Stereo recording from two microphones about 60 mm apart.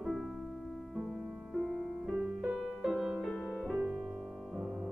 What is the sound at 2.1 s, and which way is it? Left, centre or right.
Music, centre.